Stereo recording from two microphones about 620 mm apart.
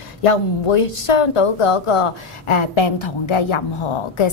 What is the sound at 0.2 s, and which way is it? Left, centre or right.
A woman's voice, left.